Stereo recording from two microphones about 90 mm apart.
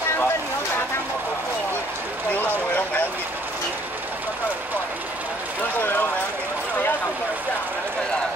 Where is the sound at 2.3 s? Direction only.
20° left (ahead or behind).